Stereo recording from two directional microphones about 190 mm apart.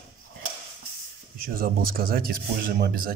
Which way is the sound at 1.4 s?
50° right (ahead or behind).